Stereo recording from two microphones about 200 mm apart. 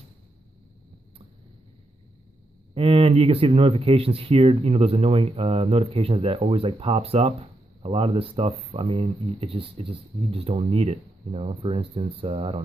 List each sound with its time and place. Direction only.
2.7 s speech: 30° right (ahead or behind)